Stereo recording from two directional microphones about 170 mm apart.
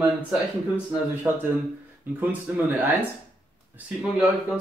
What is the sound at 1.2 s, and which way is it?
Speech, 15° right (ahead or behind).